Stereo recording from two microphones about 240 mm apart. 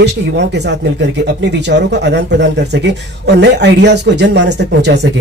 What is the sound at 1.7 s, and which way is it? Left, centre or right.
A man's voice, right.